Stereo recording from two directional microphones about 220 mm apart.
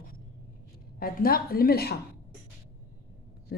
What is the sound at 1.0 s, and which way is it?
A woman's voice, 40° left (ahead or behind).